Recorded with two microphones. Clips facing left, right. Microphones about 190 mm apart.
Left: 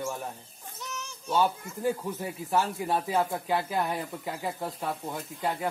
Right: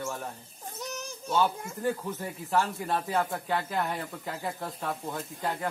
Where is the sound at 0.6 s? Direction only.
40° right (ahead or behind).